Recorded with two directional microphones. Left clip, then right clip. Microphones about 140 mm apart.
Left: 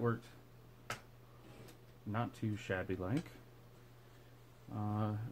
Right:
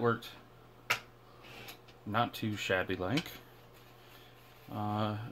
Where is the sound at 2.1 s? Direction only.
10° right (ahead or behind).